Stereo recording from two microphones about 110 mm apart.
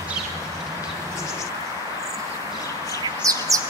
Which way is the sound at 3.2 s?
30° right (ahead or behind).